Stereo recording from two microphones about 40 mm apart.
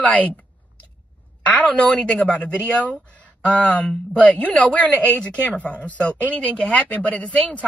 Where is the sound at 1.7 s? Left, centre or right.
Left.